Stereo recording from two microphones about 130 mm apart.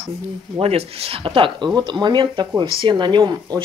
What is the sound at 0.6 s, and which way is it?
Speech, 50° right (ahead or behind).